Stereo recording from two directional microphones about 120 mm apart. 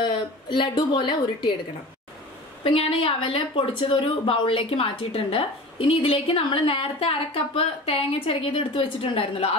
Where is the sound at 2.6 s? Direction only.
50° left (ahead or behind).